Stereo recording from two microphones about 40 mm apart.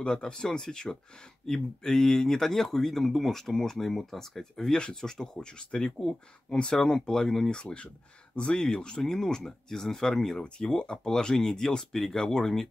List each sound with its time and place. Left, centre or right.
0.0 s speech: centre
10.6 s speech: centre